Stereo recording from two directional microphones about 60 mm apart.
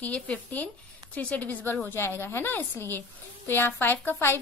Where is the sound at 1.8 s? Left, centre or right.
Left.